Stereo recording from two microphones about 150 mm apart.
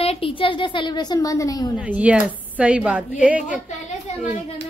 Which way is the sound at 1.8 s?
10° right (ahead or behind).